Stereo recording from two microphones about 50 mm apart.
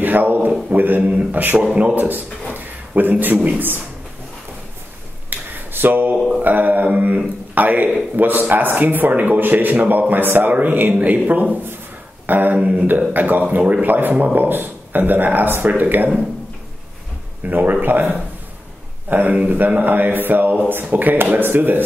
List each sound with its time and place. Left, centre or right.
0.0 s a man's voice: right
1.6 s speech: centre
2.0 s a man's voice: right
2.5 s a sound: right
3.4 s a man's voice: right
5.3 s a sound: right
6.4 s a man's voice: right
12.5 s a man's voice: right
17.4 s a man's voice: right